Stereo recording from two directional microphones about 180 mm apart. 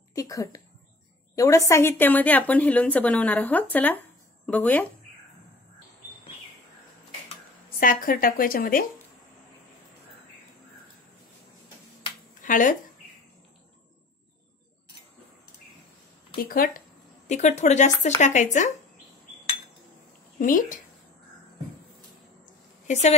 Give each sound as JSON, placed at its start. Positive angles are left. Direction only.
{"t": 0.1, "sound": "a sound", "side_deg": 20}
{"t": 1.3, "sound": "a woman's voice", "side_deg": 15}
{"t": 7.8, "sound": "a woman's voice", "side_deg": 50}
{"t": 12.4, "sound": "a sound", "side_deg": 45}
{"t": 16.4, "sound": "a woman's voice", "side_deg": 50}
{"t": 17.3, "sound": "speech", "side_deg": 40}
{"t": 20.3, "sound": "a woman's voice", "side_deg": 50}
{"t": 22.8, "sound": "speech", "side_deg": 40}